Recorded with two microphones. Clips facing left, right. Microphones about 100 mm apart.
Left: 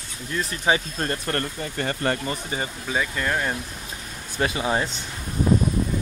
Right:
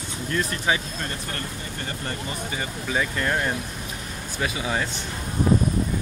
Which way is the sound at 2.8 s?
5° left (ahead or behind).